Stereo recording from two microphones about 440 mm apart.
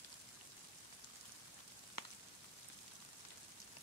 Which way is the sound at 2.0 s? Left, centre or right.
Left.